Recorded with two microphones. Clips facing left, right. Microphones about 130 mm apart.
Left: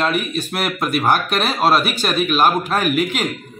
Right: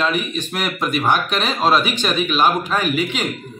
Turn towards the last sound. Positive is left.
turn(degrees=5)  # may be behind; listen again after turning